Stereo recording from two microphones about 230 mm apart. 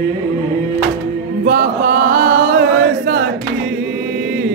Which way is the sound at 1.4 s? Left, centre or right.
Right.